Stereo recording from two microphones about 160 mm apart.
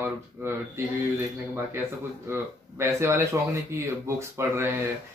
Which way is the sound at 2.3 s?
15° right (ahead or behind).